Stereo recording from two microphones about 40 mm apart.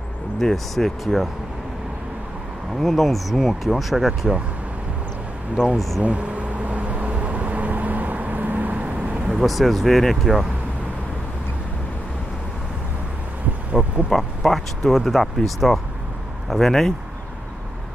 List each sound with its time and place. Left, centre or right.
0.4 s speech: centre
1.0 s speech: centre
2.8 s speech: centre
6.0 s vehicle: right
9.3 s speech: centre
13.7 s speech: right
14.1 s speech: centre